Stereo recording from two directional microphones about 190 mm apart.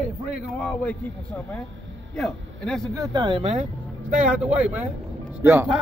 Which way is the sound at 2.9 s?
20° right (ahead or behind).